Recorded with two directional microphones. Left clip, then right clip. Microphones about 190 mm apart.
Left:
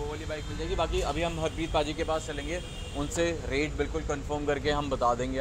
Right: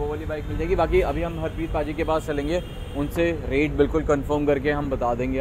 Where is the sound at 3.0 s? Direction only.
10° right (ahead or behind).